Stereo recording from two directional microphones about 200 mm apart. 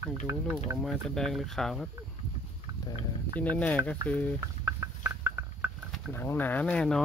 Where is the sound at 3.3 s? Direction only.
5° left (ahead or behind).